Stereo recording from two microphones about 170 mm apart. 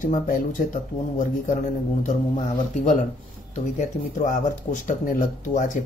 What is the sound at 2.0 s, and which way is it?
Speech, 45° left (ahead or behind).